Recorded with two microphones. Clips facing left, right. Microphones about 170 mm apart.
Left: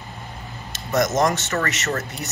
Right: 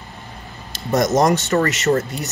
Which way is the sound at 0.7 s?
35° right (ahead or behind).